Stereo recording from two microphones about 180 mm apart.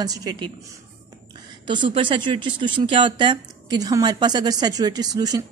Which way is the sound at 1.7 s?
25° right (ahead or behind).